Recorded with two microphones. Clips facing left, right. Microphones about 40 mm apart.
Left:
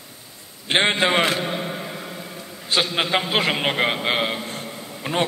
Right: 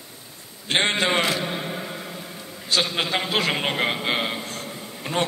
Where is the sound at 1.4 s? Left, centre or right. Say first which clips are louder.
Left 2 dB; centre.